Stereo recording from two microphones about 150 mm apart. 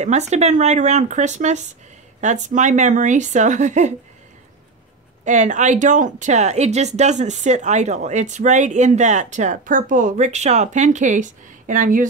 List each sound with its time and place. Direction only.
0.0 s speech: 50° right (ahead or behind)
5.2 s speech: 55° right (ahead or behind)